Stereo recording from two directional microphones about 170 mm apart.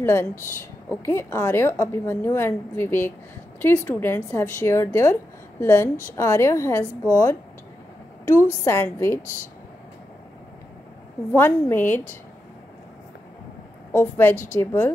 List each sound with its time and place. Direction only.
0.0 s a woman's voice: 15° left (ahead or behind)
8.6 s a woman's voice: 15° left (ahead or behind)
11.3 s a woman's voice: 15° left (ahead or behind)
13.9 s a woman's voice: 15° left (ahead or behind)